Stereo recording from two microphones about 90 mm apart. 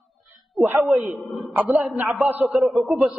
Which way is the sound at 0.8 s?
Centre (ahead or behind).